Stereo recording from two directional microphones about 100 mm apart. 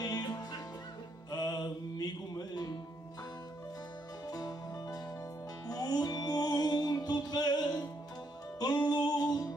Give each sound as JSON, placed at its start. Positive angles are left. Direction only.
{"t": 0.0, "sound": "music", "side_deg": 40}
{"t": 4.3, "sound": "music", "side_deg": 40}